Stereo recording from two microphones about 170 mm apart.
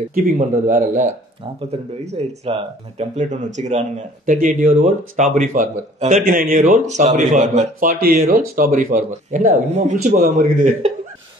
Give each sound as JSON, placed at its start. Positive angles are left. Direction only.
{"t": 0.1, "sound": "speech", "side_deg": -55}
{"t": 1.7, "sound": "speech", "side_deg": -35}
{"t": 8.3, "sound": "speech", "side_deg": -55}